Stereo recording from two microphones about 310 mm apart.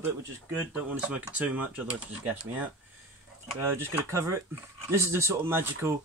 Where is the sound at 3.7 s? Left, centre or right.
Centre.